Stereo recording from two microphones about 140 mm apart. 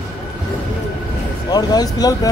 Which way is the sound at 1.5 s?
30° left (ahead or behind).